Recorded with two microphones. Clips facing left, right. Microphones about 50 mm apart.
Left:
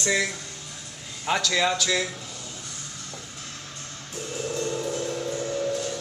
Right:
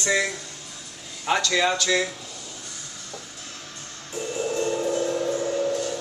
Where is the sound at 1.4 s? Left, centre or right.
Centre.